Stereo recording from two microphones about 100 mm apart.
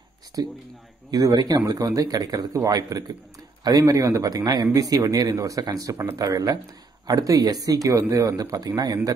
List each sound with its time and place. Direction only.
0.4 s speech: 40° right (ahead or behind)